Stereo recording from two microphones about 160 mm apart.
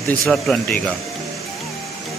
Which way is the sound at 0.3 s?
5° left (ahead or behind).